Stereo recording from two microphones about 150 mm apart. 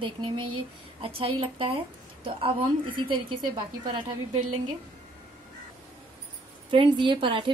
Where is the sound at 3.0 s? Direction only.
30° right (ahead or behind).